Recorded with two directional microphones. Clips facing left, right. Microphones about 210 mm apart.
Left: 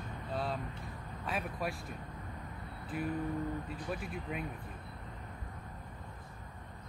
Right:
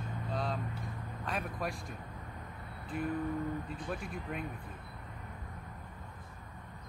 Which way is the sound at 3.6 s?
Centre (ahead or behind).